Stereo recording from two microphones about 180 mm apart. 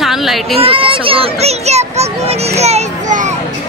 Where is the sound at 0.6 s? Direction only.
30° right (ahead or behind).